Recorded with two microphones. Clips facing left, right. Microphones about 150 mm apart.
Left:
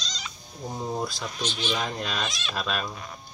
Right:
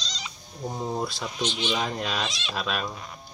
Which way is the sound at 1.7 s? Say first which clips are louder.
Right 1 dB; 5° right (ahead or behind).